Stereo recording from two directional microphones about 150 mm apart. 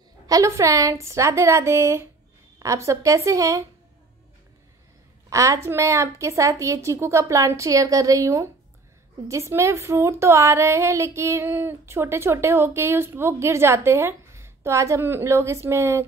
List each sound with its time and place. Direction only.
0.3 s a woman's voice: 20° right (ahead or behind)
5.3 s a woman's voice: 20° right (ahead or behind)